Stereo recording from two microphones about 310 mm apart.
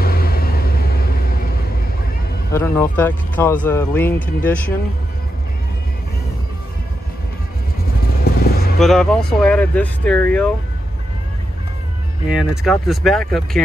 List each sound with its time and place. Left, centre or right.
0.0 s vehicle: left
2.5 s speech: centre
8.2 s vehicle: left
8.7 s speech: centre
12.3 s speech: centre